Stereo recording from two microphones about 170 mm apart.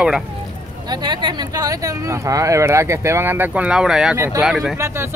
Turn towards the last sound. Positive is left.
turn(degrees=0)  # may be behind; listen again after turning